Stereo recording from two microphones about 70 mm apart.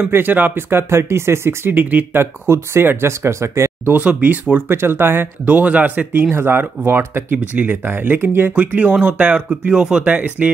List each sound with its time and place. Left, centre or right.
0.0 s speech: right
2.1 s speech: right
3.8 s speech: right
5.4 s speech: right
8.5 s speech: centre
10.1 s speech: right